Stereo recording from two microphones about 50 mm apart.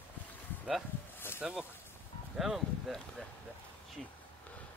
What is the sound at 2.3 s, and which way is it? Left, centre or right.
Speech, centre.